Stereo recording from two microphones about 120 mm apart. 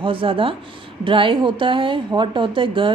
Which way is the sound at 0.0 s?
50° right (ahead or behind).